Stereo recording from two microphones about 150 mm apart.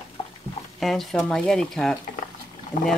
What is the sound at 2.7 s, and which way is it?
Speech, 60° left (ahead or behind).